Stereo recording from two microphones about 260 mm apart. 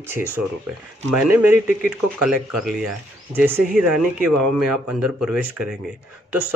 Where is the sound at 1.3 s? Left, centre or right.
Centre.